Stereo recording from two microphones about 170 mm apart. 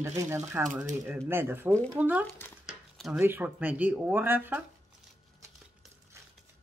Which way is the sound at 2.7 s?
Centre (ahead or behind).